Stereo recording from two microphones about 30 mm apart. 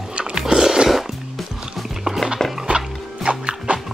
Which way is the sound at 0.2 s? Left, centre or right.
Right.